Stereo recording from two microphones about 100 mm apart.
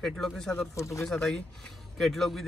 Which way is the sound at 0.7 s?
30° left (ahead or behind).